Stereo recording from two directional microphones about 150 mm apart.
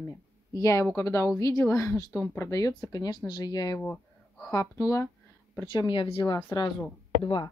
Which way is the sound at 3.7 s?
10° left (ahead or behind).